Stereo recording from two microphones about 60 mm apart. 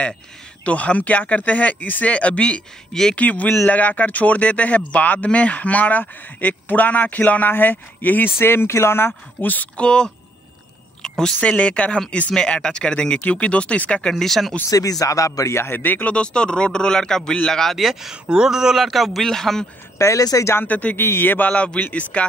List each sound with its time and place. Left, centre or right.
0.7 s speech: left
3.2 s speech: left
8.4 s speech: left
9.8 s speech: centre
11.0 s a sound: centre
11.4 s speech: centre
14.1 s speech: centre
14.7 s speech: left
15.6 s speech: left; by 17.7 s centre
17.7 s speech: centre
20.0 s speech: left
20.5 s speech: left
21.0 s speech: left
21.5 s speech: left